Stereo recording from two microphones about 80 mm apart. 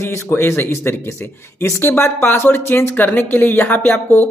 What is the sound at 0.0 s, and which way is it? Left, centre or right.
Speech, left.